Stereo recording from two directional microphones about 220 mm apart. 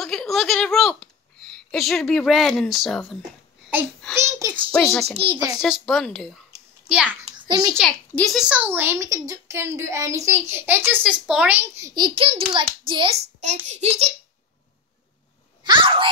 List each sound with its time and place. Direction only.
0.0 s speech: centre (ahead or behind)
4.1 s a woman's voice: 10° right (ahead or behind)
4.7 s speech: centre (ahead or behind)
5.0 s a child's voice: 25° right (ahead or behind)
5.6 s a child's voice: centre (ahead or behind)
7.2 s a sound: 20° right (ahead or behind)
7.8 s a woman's voice: 5° left (ahead or behind); by 14.1 s 30° right (ahead or behind)
15.6 s a child's voice: 20° right (ahead or behind)